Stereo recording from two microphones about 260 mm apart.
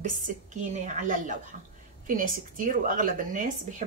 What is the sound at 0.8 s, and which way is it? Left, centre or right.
A woman's voice, right.